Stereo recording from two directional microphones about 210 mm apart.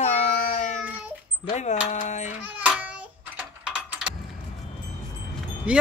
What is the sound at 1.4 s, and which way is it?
Speech, 35° left (ahead or behind).